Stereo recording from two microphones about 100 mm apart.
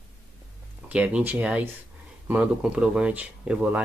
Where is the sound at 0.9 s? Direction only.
10° right (ahead or behind).